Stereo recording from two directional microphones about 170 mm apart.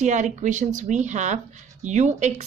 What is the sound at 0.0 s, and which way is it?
Speech, 45° right (ahead or behind).